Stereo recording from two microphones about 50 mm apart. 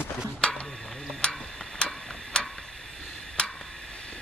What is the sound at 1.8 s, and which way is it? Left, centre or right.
Tick-tock, centre.